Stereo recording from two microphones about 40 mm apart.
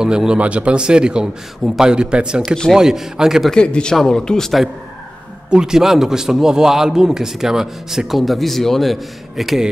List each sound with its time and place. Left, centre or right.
0.0 s speech: centre
0.4 s speech: right
2.7 s a man's voice: centre
3.5 s speech: left
3.9 s speech: centre
5.5 s a man's voice: centre
8.2 s a man's voice: centre